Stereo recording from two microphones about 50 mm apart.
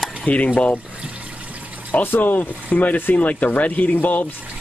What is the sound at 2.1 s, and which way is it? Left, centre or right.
Speech, left.